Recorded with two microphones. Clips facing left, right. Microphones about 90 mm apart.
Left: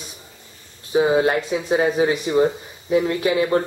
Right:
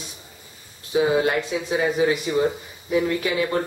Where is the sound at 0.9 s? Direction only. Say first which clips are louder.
Left 3 dB; 25° left (ahead or behind).